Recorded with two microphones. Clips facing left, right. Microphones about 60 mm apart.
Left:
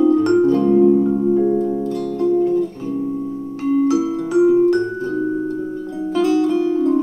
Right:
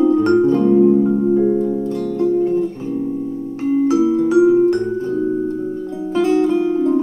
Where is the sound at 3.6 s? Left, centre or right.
Right.